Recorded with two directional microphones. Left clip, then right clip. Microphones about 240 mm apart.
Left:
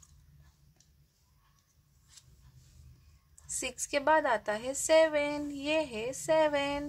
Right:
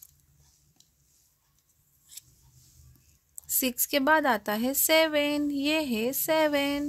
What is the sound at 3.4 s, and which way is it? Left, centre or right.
Speech, right.